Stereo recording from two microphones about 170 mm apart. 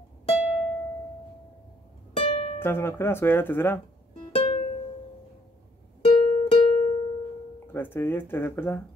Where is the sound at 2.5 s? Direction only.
15° left (ahead or behind).